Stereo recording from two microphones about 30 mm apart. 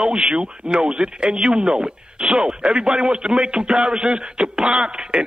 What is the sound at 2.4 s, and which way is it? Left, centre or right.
Speech, right.